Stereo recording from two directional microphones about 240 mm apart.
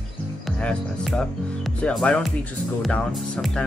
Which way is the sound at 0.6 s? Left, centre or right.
Centre.